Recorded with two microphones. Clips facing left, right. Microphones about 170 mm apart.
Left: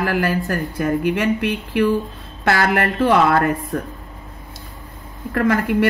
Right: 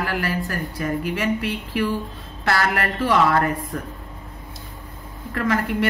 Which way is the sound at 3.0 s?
60° left (ahead or behind).